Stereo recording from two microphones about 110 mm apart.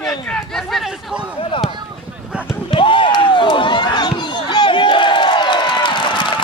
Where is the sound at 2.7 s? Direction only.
50° left (ahead or behind).